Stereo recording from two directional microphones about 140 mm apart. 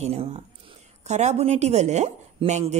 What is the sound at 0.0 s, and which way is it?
Speech, 45° right (ahead or behind).